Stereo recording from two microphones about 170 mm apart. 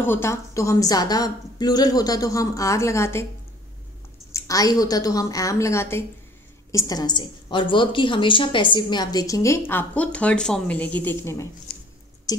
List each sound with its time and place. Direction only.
0.0 s a woman's voice: 15° left (ahead or behind)
4.3 s a woman's voice: 20° left (ahead or behind)
12.3 s a sound: 20° left (ahead or behind)